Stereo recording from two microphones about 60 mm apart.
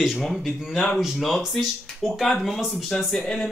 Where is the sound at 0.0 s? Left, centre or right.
Centre.